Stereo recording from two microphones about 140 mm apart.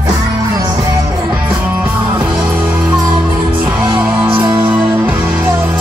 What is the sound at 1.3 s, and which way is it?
Music, 10° right (ahead or behind).